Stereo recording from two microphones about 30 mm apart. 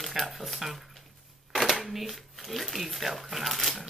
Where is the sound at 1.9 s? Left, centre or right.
Centre.